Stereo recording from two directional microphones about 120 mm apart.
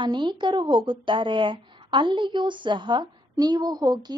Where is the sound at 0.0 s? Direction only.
40° right (ahead or behind).